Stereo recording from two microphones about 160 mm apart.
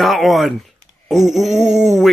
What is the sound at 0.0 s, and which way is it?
Speech, centre (ahead or behind).